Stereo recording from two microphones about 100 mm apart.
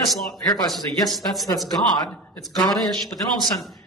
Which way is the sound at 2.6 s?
Centre (ahead or behind).